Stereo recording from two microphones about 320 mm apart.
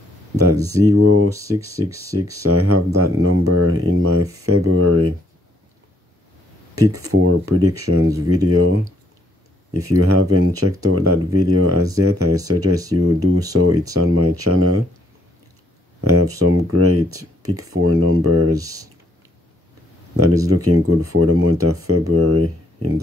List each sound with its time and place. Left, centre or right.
0.4 s a sound: right
0.8 s speech: right
1.3 s speech: centre
2.4 s speech: right
6.9 s speech: right
9.8 s speech: right
16.0 s speech: right
18.5 s speech: centre
20.5 s speech: right